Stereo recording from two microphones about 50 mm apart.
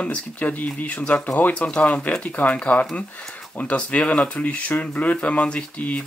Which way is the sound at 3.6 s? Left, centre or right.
Left.